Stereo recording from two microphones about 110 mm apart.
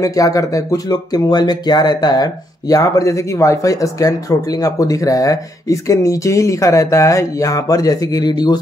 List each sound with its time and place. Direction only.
0.0 s speech: 30° left (ahead or behind)